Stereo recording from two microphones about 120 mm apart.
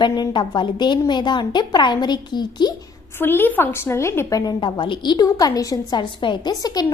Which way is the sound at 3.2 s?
20° left (ahead or behind).